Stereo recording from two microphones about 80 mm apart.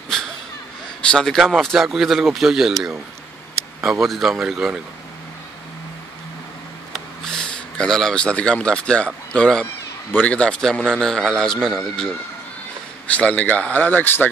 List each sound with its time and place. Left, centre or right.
0.1 s a sound: centre
1.1 s speech: centre
4.0 s speech: centre
6.9 s a man's voice: centre
13.1 s speech: centre